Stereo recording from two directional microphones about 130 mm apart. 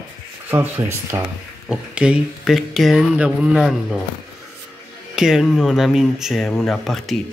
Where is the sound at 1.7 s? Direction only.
10° right (ahead or behind).